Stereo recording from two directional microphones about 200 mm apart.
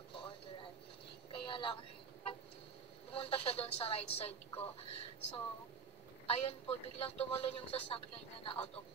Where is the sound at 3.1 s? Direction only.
30° left (ahead or behind).